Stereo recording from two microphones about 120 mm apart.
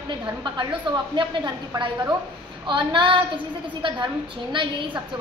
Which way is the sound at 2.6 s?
40° right (ahead or behind).